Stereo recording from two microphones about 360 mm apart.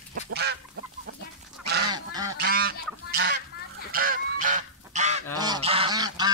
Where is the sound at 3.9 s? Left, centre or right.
Right.